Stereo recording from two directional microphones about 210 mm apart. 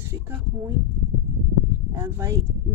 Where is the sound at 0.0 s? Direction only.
10° right (ahead or behind).